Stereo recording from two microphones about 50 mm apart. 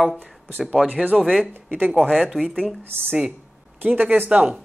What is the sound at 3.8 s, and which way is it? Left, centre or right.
Speech, right.